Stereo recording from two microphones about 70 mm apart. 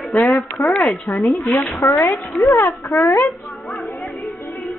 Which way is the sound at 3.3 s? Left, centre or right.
Centre.